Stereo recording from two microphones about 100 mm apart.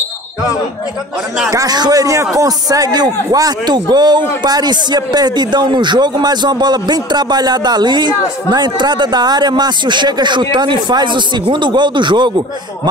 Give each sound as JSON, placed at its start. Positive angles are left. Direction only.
{"t": 1.5, "sound": "a man's voice", "side_deg": -40}